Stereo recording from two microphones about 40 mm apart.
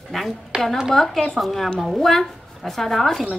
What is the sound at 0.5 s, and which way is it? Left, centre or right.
Speech, centre.